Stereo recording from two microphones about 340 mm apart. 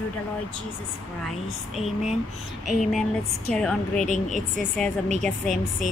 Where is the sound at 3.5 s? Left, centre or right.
Centre.